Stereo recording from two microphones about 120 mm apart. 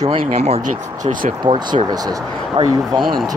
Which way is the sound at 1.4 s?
40° right (ahead or behind).